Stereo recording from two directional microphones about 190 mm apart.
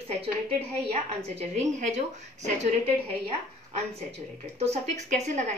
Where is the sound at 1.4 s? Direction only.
35° right (ahead or behind).